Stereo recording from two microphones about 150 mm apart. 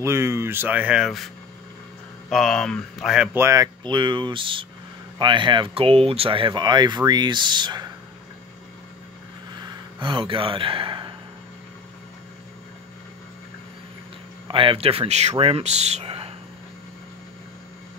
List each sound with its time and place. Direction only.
0.0 s speech: 20° right (ahead or behind); by 3.3 s centre (ahead or behind)
3.3 s speech: 20° right (ahead or behind)
3.8 s speech: 30° right (ahead or behind)
9.6 s a sound: 30° right (ahead or behind)
14.5 s speech: 35° right (ahead or behind)